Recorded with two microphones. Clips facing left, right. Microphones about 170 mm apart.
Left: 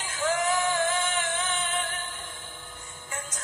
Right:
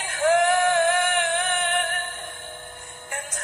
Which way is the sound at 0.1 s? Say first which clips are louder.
Right 7 dB; 60° right (ahead or behind).